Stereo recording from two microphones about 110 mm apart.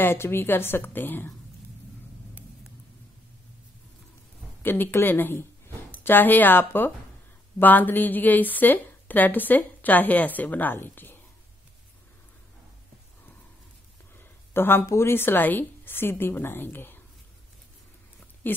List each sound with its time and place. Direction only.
0.0 s a woman's voice: 20° left (ahead or behind)
4.6 s a woman's voice: 20° left (ahead or behind)
14.1 s speech: 20° left (ahead or behind)
18.4 s speech: 20° left (ahead or behind)